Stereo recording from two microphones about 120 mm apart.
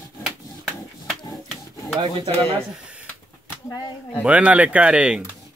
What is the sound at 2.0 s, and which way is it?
Speech, 40° right (ahead or behind).